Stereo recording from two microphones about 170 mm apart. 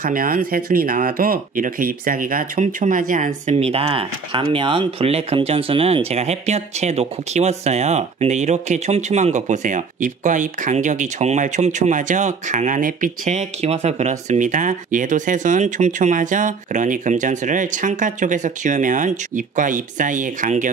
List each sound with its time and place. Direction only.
0.0 s speech: 60° right (ahead or behind)